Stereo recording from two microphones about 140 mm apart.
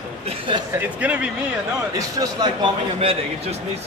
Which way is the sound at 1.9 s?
30° right (ahead or behind).